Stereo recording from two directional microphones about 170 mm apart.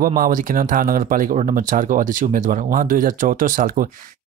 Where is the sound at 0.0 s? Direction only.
60° right (ahead or behind).